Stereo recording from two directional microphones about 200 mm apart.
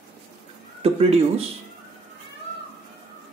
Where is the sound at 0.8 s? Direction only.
30° right (ahead or behind).